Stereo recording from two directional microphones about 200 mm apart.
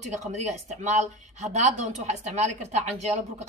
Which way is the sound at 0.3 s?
35° right (ahead or behind).